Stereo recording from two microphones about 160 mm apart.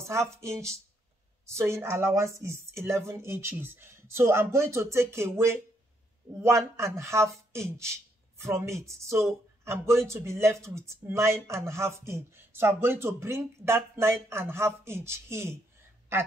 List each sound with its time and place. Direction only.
0.1 s speech: 20° right (ahead or behind)